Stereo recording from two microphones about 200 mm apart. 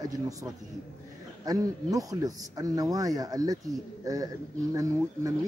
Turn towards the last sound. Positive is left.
turn(degrees=-15)  # may be behind; listen again after turning